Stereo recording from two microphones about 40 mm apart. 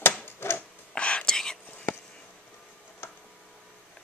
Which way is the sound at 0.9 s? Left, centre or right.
Left.